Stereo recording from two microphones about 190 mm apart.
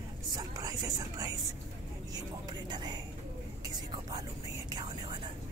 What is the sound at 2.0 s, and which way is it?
Vehicle, 20° right (ahead or behind).